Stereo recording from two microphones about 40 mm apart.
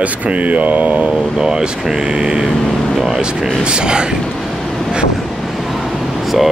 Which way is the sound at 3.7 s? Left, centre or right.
Right.